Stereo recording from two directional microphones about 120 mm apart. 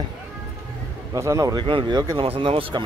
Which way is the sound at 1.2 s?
25° right (ahead or behind).